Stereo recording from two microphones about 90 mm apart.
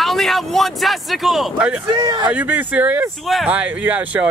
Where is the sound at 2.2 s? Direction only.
20° right (ahead or behind).